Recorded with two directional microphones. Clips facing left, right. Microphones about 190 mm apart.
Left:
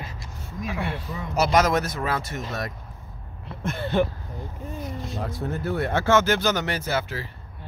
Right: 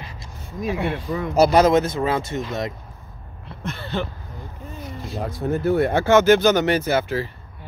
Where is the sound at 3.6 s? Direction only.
50° left (ahead or behind).